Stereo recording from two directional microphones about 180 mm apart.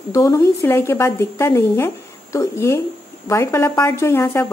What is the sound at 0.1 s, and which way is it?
A woman's voice, 15° left (ahead or behind).